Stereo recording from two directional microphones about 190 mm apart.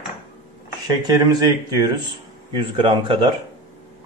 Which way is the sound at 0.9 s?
20° right (ahead or behind).